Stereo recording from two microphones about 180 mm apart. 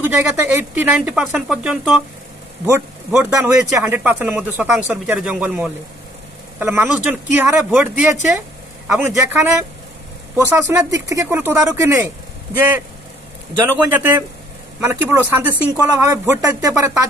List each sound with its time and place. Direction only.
0.0 s speech: 10° right (ahead or behind)
3.1 s speech: 10° right (ahead or behind)
13.9 s speech: 10° right (ahead or behind)